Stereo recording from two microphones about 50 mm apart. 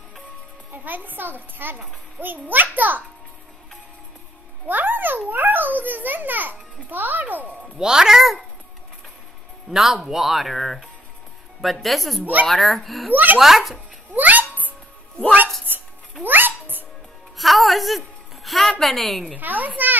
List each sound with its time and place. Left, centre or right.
0.8 s a child's voice: right
4.6 s a child's voice: right
7.8 s speech: centre
9.7 s speech: centre
13.1 s a child's voice: right
13.4 s speech: centre
14.1 s meow: right
15.6 s cat: right
17.4 s a sound: centre
18.7 s speech: centre
19.3 s a child's voice: right